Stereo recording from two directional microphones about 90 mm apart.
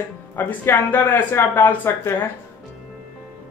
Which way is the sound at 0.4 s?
20° left (ahead or behind).